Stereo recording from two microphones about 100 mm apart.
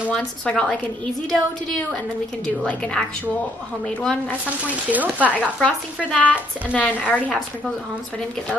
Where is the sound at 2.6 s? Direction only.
10° left (ahead or behind).